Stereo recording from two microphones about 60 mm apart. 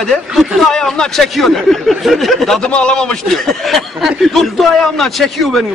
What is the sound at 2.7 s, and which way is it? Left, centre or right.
Speech, centre.